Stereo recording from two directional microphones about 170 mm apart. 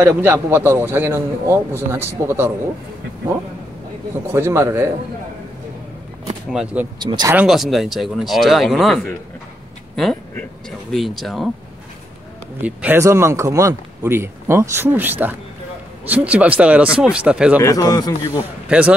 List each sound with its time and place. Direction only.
0.0 s speech: 10° right (ahead or behind)
4.3 s speech: 15° right (ahead or behind)
6.5 s speech: 5° right (ahead or behind)
7.0 s speech: 25° right (ahead or behind)
7.3 s speech: centre (ahead or behind)
12.6 s speech: 10° right (ahead or behind)
17.6 s a man's voice: 20° left (ahead or behind)
18.7 s speech: 5° right (ahead or behind)